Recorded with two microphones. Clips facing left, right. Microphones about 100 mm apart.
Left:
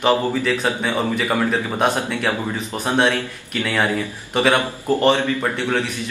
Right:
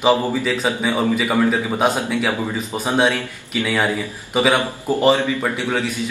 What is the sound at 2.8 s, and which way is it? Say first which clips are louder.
A man's voice: even; 5° right (ahead or behind).